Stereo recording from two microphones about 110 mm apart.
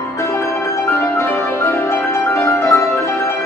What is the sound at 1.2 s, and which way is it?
Music, 20° left (ahead or behind).